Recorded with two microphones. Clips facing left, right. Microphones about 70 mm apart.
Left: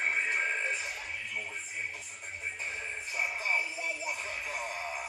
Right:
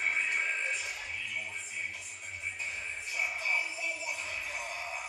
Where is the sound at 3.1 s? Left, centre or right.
Left.